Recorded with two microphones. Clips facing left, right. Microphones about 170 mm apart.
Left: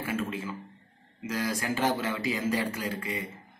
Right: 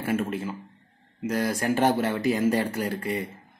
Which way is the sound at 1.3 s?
55° right (ahead or behind).